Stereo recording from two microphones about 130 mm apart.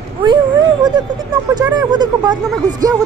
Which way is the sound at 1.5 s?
30° right (ahead or behind).